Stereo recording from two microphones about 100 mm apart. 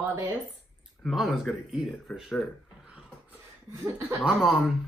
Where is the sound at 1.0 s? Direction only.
Centre (ahead or behind).